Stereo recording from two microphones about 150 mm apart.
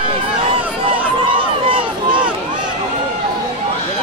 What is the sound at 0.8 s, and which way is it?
Crowd, 35° right (ahead or behind).